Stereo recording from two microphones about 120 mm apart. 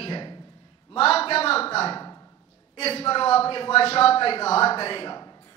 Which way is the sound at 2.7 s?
55° left (ahead or behind).